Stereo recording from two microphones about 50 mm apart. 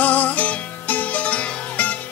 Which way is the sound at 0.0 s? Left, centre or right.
Left.